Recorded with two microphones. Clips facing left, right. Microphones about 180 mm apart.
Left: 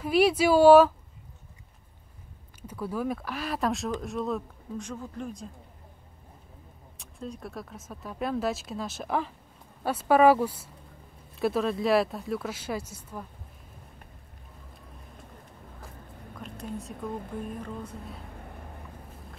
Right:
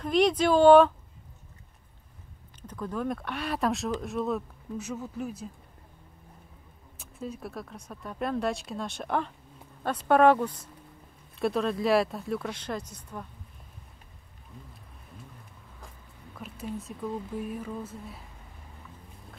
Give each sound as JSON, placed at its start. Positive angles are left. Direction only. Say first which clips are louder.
{"t": 0.0, "sound": "speech", "louder": "left 1 dB", "side_deg": 5}
{"t": 2.6, "sound": "speech", "louder": "left 1 dB", "side_deg": 10}
{"t": 7.0, "sound": "speech", "louder": "right 1 dB", "side_deg": -5}
{"t": 16.3, "sound": "a woman's voice", "louder": "right 1 dB", "side_deg": -5}
{"t": 17.1, "sound": "speech", "louder": "right 2 dB", "side_deg": 55}
{"t": 17.4, "sound": "speech", "louder": "right 1 dB", "side_deg": -5}
{"t": 18.3, "sound": "vehicle", "louder": "left 8 dB", "side_deg": 60}